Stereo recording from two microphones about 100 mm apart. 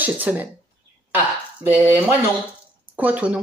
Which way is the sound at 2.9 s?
15° right (ahead or behind).